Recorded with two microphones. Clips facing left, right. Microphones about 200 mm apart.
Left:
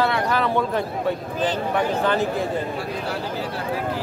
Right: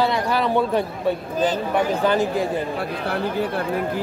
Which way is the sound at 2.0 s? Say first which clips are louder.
Right 2 dB; 10° right (ahead or behind).